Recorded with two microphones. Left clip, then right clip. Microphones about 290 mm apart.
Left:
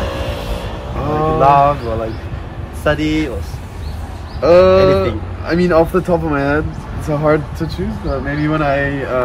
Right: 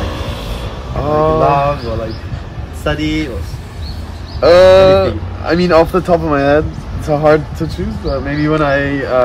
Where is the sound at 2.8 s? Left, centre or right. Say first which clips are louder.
Left 1 dB; centre.